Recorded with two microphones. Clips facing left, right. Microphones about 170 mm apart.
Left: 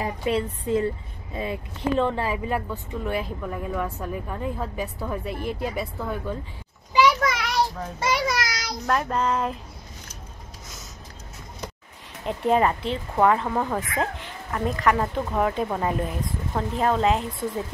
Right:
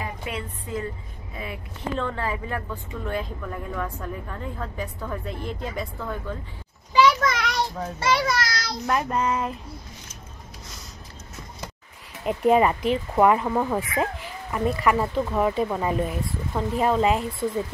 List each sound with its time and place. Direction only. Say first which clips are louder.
0.0 s music: left 7 dB; 30° left (ahead or behind)
1.3 s speech: left 6 dB; 25° left (ahead or behind); by 6.3 s 10° left (ahead or behind)
6.9 s children playing: right 1 dB; 10° left (ahead or behind)
8.0 s speech: right 1 dB; 15° left (ahead or behind)
8.8 s speech: even; 5° right (ahead or behind)
12.3 s speech: right 2 dB; 5° right (ahead or behind)